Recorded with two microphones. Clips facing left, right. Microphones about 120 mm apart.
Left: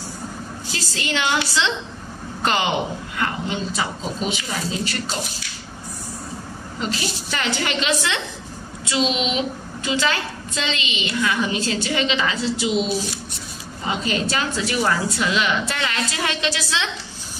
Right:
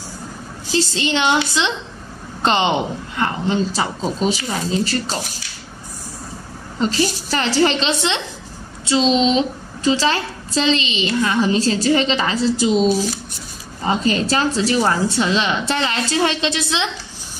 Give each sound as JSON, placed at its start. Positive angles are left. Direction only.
{"t": 0.7, "sound": "a woman's voice", "side_deg": -25}
{"t": 6.8, "sound": "a woman's voice", "side_deg": -35}
{"t": 13.8, "sound": "a woman's voice", "side_deg": -35}